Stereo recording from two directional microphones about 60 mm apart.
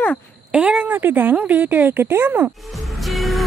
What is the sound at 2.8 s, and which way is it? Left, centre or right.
Music, centre.